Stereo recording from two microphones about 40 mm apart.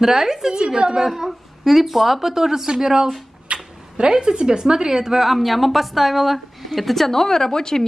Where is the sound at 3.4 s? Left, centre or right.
Right.